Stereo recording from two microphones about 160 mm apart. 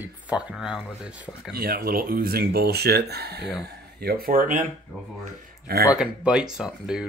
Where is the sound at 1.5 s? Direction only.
65° right (ahead or behind); by 3.5 s 90° right.